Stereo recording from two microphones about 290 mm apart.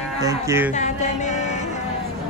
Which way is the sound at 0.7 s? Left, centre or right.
Left.